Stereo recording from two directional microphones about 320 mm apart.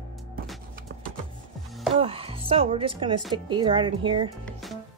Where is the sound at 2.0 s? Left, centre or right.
Centre.